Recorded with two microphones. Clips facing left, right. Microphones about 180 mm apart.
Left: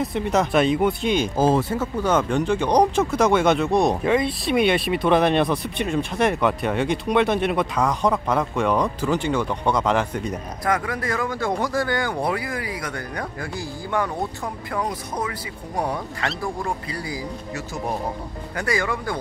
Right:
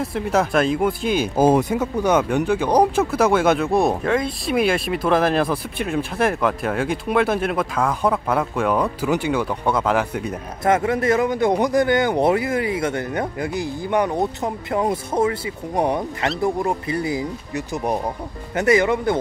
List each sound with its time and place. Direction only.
0.0 s speech: centre (ahead or behind)
1.3 s speech: 15° right (ahead or behind)
10.6 s speech: 25° right (ahead or behind)